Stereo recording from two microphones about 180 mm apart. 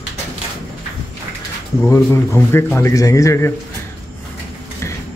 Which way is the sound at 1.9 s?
15° left (ahead or behind).